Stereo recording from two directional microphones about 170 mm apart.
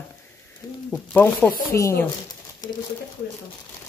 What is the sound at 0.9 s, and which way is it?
Speech, 10° left (ahead or behind).